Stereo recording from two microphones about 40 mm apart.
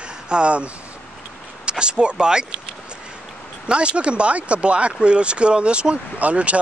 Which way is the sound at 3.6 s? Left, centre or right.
Right.